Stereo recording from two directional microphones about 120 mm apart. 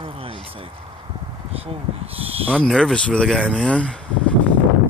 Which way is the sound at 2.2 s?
55° right (ahead or behind).